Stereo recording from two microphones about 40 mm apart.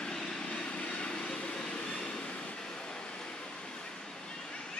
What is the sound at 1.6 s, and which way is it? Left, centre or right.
Train, left.